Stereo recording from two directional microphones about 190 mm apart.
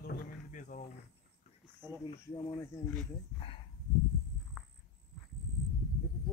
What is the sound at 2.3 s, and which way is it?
Speech, 20° left (ahead or behind).